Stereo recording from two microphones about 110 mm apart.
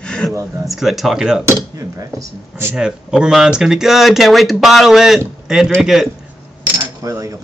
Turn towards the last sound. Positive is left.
turn(degrees=-30)  # may be behind; listen again after turning